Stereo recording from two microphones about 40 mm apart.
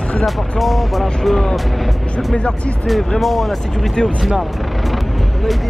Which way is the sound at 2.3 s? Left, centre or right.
Left.